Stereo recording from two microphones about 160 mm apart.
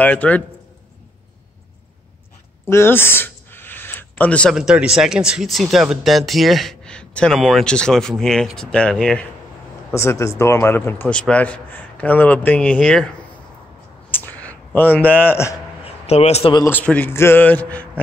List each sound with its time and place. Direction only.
0.0 s a man's voice: 10° left (ahead or behind)
2.6 s speech: 15° left (ahead or behind)
9.9 s a man's voice: 20° left (ahead or behind)
14.1 s a sound: 10° left (ahead or behind)
16.1 s speech: 40° left (ahead or behind)
16.6 s a man's voice: 10° left (ahead or behind)